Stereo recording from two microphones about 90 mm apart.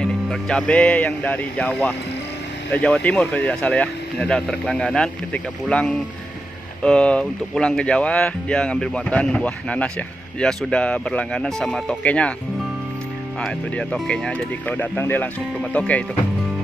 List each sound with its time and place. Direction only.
0.0 s speech: 5° left (ahead or behind)
13.4 s speech: 5° left (ahead or behind)
15.0 s speech: 25° left (ahead or behind)